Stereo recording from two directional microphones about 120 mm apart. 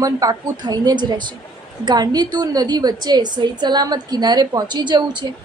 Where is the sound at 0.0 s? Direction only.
30° right (ahead or behind).